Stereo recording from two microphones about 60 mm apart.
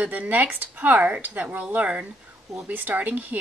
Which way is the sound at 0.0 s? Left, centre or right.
Right.